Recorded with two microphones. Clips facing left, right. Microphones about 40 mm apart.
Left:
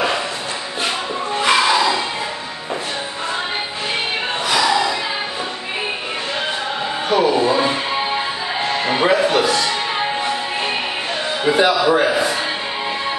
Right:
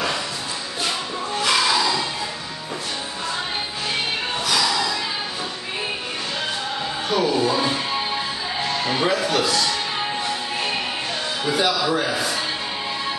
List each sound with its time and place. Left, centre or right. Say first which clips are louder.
0.8 s music: left 4 dB; left
4.5 s a sound: left 5 dB; left
7.1 s music: left 5 dB; left
11.4 s a man's voice: left 7 dB; left